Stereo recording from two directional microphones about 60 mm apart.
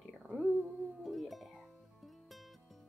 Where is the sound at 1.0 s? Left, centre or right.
Centre.